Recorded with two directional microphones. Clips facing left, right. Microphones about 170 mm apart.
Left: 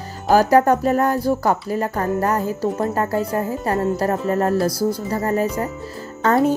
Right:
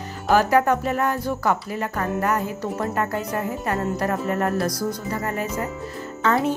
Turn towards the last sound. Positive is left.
turn(degrees=40)  # may be behind; listen again after turning